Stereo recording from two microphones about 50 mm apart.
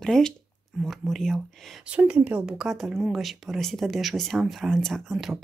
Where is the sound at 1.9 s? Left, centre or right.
Right.